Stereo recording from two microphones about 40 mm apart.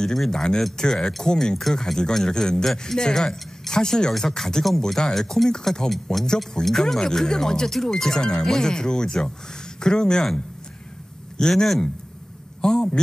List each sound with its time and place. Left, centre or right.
0.0 s speech: centre
6.6 s speech: centre
11.3 s speech: centre